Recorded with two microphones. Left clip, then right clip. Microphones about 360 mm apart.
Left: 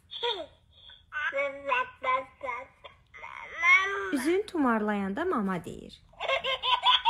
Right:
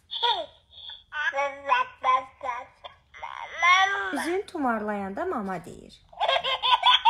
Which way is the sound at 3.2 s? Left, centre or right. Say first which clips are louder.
Right 5 dB; centre.